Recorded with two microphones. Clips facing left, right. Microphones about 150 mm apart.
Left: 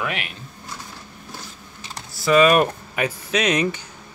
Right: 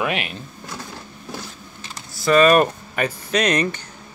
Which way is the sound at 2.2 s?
5° left (ahead or behind).